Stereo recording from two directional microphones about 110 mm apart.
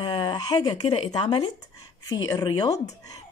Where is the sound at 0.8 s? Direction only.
60° left (ahead or behind).